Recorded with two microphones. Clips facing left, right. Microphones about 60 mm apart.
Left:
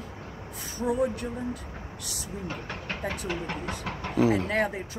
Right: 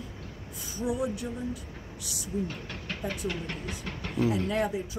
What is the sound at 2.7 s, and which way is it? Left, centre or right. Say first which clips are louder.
Speech: left 2 dB; left.